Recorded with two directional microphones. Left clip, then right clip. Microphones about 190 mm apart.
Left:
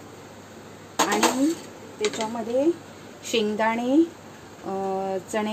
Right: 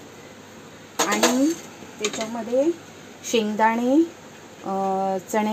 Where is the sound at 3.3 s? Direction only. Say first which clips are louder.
Right 3 dB; 25° right (ahead or behind).